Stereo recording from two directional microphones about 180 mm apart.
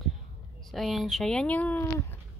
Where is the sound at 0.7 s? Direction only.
Centre (ahead or behind).